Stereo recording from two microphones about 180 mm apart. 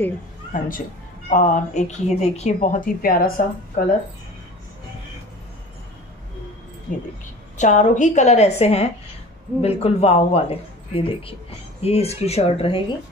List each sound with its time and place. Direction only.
0.5 s a woman's voice: 50° left (ahead or behind)
7.5 s speech: 40° left (ahead or behind)